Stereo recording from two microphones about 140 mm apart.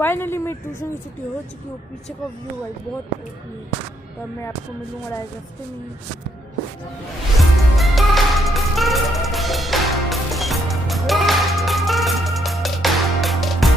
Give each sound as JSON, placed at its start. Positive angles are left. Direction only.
{"t": 0.0, "sound": "a woman's voice", "side_deg": 15}
{"t": 7.3, "sound": "music", "side_deg": 0}